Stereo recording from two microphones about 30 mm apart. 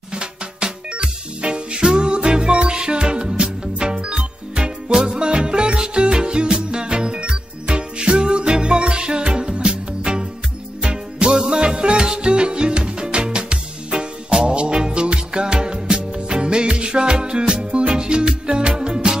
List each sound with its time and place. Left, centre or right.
0.1 s music: right